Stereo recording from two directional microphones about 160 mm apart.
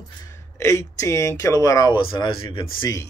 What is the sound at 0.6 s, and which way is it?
Speech, 20° left (ahead or behind).